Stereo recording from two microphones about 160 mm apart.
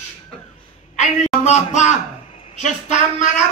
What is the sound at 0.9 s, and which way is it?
Speech, 45° left (ahead or behind).